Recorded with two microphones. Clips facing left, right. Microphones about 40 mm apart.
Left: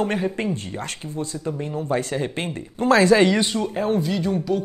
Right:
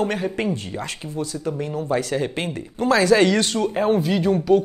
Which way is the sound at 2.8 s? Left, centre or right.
Left.